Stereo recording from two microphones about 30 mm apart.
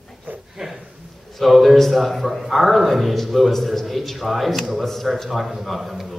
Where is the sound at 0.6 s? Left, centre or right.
Centre.